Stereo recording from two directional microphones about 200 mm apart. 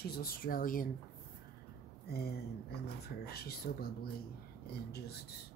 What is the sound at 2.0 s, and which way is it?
Speech, 50° left (ahead or behind).